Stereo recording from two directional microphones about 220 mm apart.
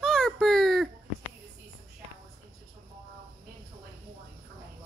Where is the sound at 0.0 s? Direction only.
Centre (ahead or behind).